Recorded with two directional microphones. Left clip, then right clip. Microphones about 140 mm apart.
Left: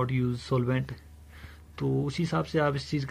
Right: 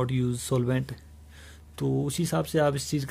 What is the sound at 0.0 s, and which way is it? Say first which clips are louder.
Speech: right 1 dB; 35° right (ahead or behind).